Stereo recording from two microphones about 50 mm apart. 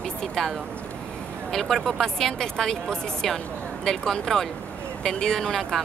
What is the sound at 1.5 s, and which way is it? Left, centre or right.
Speech, centre.